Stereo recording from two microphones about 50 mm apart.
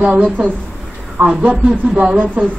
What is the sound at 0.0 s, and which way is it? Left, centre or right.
A woman's voice, right.